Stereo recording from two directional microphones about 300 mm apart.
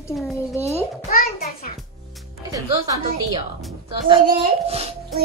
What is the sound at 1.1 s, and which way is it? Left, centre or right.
Speech, left.